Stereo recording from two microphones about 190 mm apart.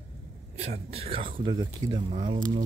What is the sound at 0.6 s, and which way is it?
Speech, 35° right (ahead or behind).